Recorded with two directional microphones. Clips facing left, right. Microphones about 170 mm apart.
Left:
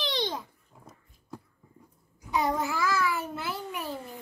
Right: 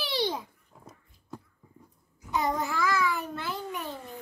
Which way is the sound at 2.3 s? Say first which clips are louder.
Left 1 dB; centre (ahead or behind).